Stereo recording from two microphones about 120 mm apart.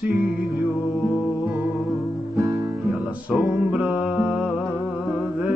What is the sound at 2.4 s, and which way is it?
Music, centre (ahead or behind).